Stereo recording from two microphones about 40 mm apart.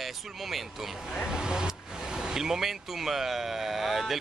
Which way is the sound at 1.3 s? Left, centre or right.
Centre.